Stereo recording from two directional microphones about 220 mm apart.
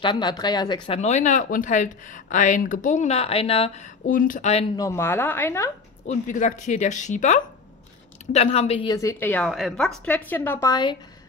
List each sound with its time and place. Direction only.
0.0 s a woman's voice: 20° left (ahead or behind)
0.8 s speech: 30° left (ahead or behind)
4.7 s a woman's voice: 15° left (ahead or behind)
6.0 s a woman's voice: 35° left (ahead or behind); by 11.0 s 20° left (ahead or behind)